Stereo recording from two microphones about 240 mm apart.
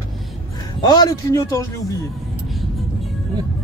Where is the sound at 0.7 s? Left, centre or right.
Centre.